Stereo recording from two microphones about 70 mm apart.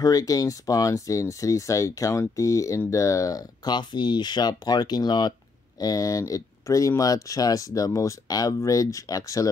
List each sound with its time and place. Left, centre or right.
0.0 s speech: left
3.6 s speech: left
5.8 s speech: left